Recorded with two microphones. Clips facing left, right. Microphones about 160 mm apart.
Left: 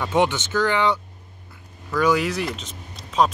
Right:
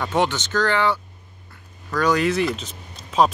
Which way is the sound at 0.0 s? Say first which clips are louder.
Left 1 dB; 10° left (ahead or behind).